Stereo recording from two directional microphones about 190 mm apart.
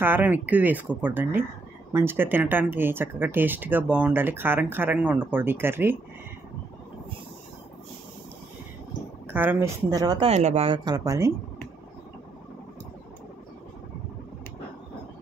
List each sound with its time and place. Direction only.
0.0 s speech: 10° right (ahead or behind)
9.3 s speech: 10° right (ahead or behind)
10.2 s speech: 35° right (ahead or behind); by 11.3 s 15° right (ahead or behind)